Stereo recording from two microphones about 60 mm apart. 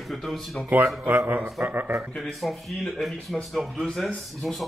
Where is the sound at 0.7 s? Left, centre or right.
Right.